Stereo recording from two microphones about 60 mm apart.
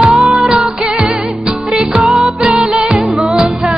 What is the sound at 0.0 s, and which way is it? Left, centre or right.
Music, centre.